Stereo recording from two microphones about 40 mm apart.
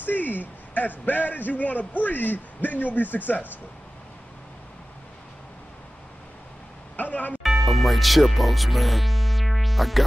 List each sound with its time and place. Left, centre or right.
0.0 s a man's voice: left
7.0 s speech: left
7.4 s music: centre